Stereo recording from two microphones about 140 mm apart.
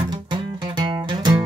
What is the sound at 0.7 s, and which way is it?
Music, 30° right (ahead or behind).